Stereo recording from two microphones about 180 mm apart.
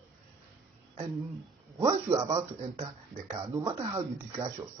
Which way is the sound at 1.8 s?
20° right (ahead or behind).